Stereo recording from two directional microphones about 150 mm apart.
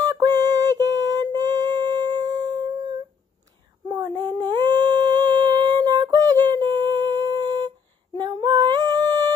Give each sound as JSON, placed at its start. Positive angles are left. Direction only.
{"t": 0.0, "sound": "music", "side_deg": -25}
{"t": 4.2, "sound": "humming", "side_deg": -25}